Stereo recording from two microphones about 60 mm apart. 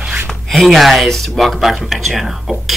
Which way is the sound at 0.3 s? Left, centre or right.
Centre.